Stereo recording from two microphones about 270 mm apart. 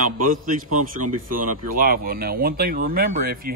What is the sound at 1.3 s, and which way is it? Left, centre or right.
Speech, right.